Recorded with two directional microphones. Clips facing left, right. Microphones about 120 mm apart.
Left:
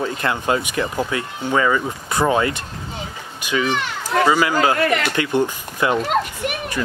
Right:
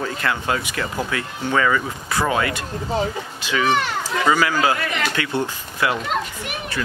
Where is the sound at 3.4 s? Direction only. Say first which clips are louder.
Right 1 dB; 15° left (ahead or behind).